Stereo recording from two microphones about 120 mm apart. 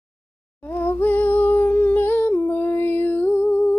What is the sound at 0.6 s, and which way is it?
Humming, 20° left (ahead or behind).